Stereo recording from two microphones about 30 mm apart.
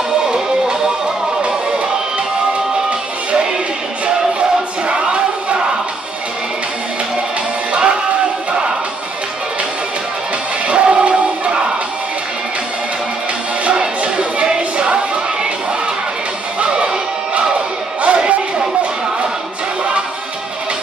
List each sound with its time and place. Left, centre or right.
0.3 s music: right
2.9 s music: right
7.7 s music: right
10.7 s music: right
13.7 s music: right
16.5 s music: right
18.0 s a sound: right